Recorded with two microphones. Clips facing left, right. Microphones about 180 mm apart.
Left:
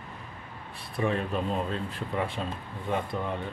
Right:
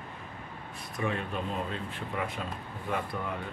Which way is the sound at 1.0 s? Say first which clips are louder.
Left 4 dB; 35° left (ahead or behind).